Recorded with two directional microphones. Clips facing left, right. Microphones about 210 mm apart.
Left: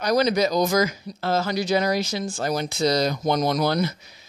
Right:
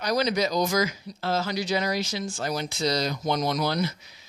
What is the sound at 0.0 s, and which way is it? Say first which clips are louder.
Speech: left 4 dB; 50° left (ahead or behind).